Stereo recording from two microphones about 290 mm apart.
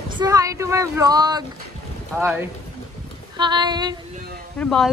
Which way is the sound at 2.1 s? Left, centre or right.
Centre.